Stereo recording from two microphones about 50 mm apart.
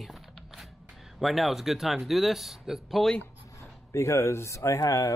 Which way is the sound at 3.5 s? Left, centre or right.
Left.